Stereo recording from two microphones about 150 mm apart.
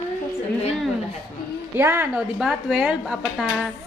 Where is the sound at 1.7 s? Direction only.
15° right (ahead or behind).